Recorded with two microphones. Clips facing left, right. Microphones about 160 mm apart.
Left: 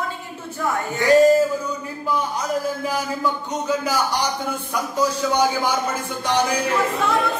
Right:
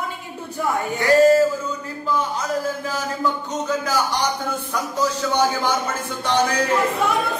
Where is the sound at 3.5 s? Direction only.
10° left (ahead or behind).